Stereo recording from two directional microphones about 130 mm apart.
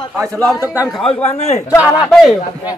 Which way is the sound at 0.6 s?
10° right (ahead or behind).